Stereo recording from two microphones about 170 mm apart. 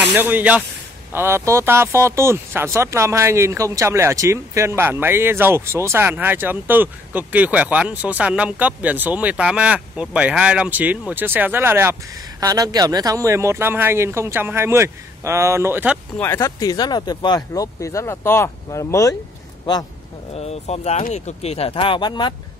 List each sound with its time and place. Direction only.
0.1 s speech: 10° right (ahead or behind)
16.2 s speech: 15° left (ahead or behind)
20.3 s speech: 40° left (ahead or behind)